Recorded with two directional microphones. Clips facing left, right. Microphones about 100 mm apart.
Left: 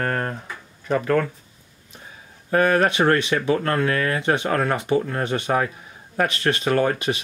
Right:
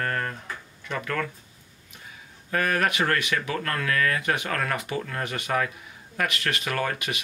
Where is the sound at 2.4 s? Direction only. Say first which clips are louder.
Left 7 dB; 30° left (ahead or behind).